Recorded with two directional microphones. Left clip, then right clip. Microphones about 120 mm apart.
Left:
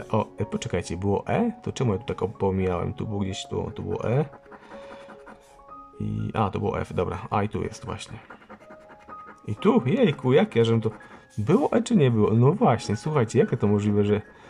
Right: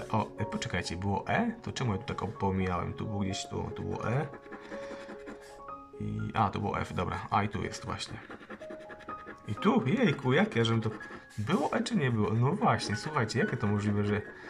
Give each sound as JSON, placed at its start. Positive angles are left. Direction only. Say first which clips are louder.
{"t": 0.1, "sound": "speech", "louder": "left 6 dB", "side_deg": 20}
{"t": 6.2, "sound": "speech", "louder": "left 4 dB", "side_deg": 20}
{"t": 9.6, "sound": "speech", "louder": "left 7 dB", "side_deg": 25}